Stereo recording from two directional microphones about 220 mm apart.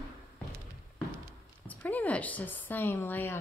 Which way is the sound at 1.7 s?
5° left (ahead or behind).